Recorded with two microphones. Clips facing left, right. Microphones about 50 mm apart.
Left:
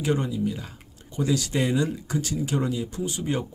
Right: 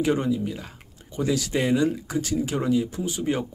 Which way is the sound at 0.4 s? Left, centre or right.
Right.